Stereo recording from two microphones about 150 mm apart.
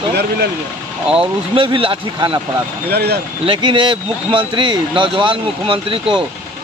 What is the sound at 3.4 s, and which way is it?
Speech, 35° right (ahead or behind).